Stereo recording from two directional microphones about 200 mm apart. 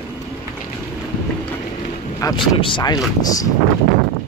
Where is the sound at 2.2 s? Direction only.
25° left (ahead or behind).